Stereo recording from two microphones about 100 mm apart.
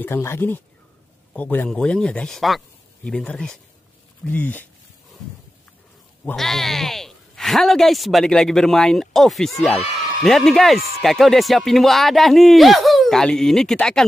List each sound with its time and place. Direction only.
0.0 s speech: 25° left (ahead or behind)
6.3 s speech: 5° left (ahead or behind)